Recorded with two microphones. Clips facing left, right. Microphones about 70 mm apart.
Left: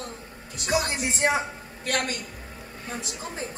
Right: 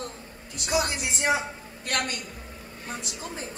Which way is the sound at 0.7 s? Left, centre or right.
Left.